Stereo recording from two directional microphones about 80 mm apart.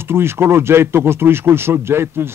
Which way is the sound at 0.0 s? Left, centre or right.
Right.